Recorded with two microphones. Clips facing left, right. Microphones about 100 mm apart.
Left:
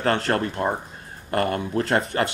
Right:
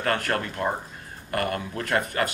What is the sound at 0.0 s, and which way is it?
Speech, 30° left (ahead or behind).